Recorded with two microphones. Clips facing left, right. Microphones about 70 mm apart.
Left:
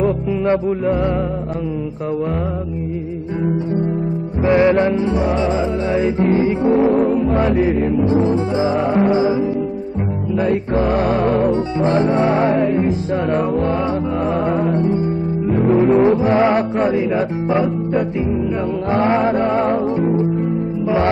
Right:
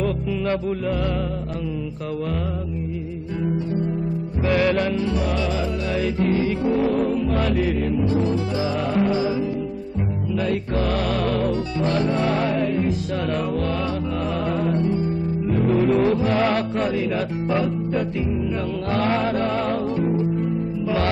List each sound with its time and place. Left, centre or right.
4.5 s music: left
15.8 s music: left